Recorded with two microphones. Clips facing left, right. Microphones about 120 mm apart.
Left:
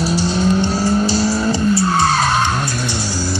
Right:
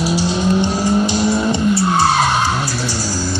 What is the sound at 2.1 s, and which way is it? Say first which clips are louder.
Skidding: right 1 dB; 10° right (ahead or behind).